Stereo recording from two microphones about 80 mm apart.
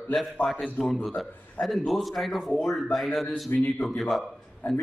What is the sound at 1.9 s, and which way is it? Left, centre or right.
A man's voice, centre.